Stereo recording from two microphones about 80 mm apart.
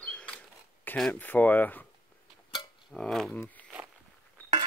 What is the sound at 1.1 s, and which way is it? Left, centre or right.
Speech, left.